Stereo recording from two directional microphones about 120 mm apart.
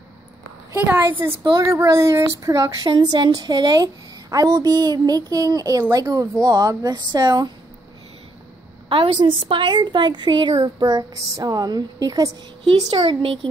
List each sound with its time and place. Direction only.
0.7 s a woman's voice: 15° right (ahead or behind)
1.4 s a woman's voice: 30° right (ahead or behind)
2.9 s a woman's voice: 40° right (ahead or behind)
8.8 s a woman's voice: 50° right (ahead or behind)
10.5 s a woman's voice: 30° right (ahead or behind)
12.7 s speech: 40° right (ahead or behind)